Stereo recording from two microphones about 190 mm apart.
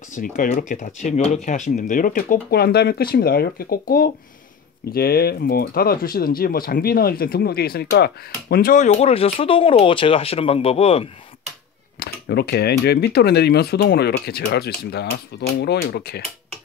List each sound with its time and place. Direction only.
0.1 s speech: 45° left (ahead or behind)
12.0 s speech: 55° left (ahead or behind)